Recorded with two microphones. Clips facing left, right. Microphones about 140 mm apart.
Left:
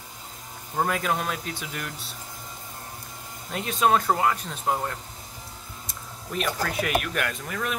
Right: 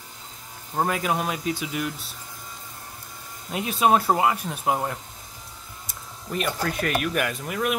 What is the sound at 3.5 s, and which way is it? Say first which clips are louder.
Speech: right 2 dB; 10° right (ahead or behind).